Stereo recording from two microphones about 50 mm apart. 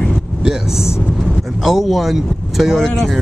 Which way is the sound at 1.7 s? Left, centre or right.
Centre.